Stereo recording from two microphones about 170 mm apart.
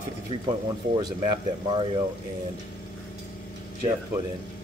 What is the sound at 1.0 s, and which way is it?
Speech, 25° right (ahead or behind).